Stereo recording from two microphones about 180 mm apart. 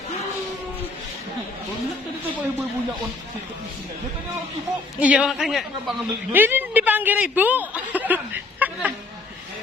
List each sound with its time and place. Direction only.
5.0 s a woman's voice: 5° right (ahead or behind)